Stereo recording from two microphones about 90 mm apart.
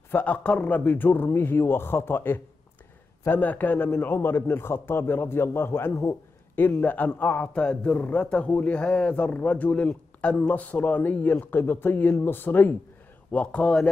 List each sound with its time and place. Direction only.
0.1 s a man's voice: 15° left (ahead or behind)